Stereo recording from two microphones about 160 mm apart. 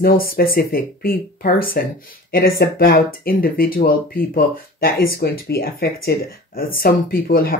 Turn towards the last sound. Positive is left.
turn(degrees=65)  # may be behind; listen again after turning